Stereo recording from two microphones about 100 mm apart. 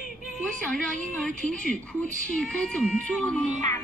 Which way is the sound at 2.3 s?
10° left (ahead or behind).